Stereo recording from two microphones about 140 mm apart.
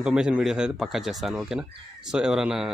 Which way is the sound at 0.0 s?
5° right (ahead or behind).